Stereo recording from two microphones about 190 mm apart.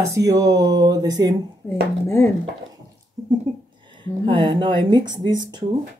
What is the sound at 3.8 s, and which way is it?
Speech, 25° right (ahead or behind).